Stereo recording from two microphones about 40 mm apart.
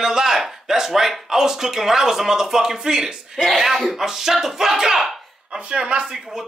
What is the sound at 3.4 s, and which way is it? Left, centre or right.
Speech, centre.